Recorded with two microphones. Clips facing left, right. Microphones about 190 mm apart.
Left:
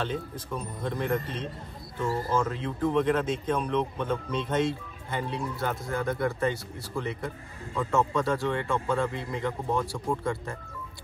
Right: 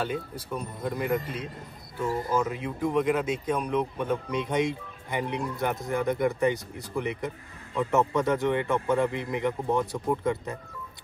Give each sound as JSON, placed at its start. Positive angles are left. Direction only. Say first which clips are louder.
{"t": 0.0, "sound": "speech", "louder": "right 1 dB", "side_deg": -10}